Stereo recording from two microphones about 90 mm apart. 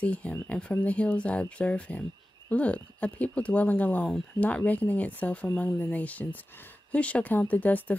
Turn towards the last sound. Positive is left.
turn(degrees=20)  # may be behind; listen again after turning